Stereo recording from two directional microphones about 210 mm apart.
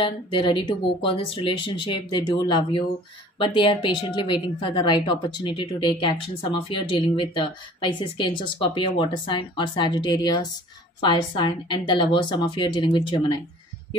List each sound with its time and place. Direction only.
0.0 s a woman's voice: 20° left (ahead or behind)